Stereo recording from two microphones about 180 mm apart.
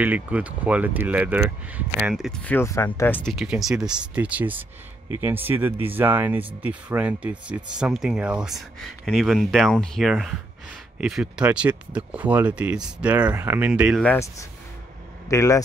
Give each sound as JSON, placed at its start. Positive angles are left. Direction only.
{"t": 0.0, "sound": "speech", "side_deg": -10}
{"t": 3.3, "sound": "speech", "side_deg": 0}
{"t": 14.0, "sound": "speech", "side_deg": 10}